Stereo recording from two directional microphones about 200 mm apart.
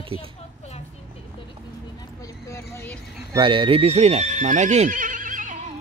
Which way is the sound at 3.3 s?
25° right (ahead or behind).